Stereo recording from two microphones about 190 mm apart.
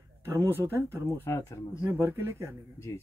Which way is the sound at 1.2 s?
15° left (ahead or behind).